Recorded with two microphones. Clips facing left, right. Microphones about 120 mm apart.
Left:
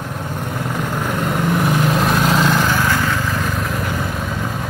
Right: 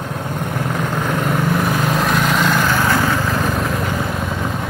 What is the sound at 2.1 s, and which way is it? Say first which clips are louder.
Vehicle: left 1 dB; 25° left (ahead or behind).